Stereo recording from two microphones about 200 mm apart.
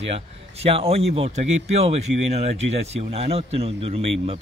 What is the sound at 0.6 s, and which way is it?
Speech, 30° right (ahead or behind).